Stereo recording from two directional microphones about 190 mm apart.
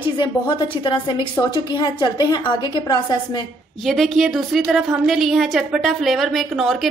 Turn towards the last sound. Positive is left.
turn(degrees=0)  # may be behind; listen again after turning